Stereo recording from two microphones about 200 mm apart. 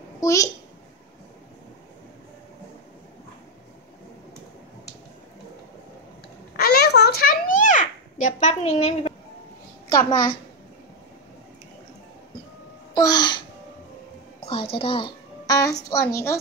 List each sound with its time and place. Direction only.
0.2 s a child's voice: 15° left (ahead or behind)
6.5 s a sound: 50° left (ahead or behind); by 9.1 s 35° left (ahead or behind)
12.9 s babbling: 20° left (ahead or behind)
14.4 s a child's voice: 30° left (ahead or behind)